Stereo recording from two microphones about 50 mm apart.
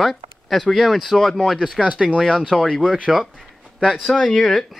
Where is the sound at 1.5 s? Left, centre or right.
Centre.